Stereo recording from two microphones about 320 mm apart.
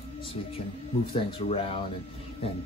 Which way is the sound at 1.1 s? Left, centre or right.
Centre.